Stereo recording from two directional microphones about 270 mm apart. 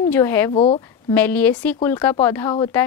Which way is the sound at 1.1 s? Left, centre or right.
Centre.